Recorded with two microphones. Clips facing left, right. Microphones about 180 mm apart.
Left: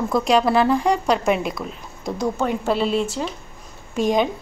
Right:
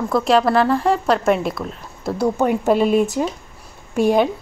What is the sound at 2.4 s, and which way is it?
Speech, 15° right (ahead or behind).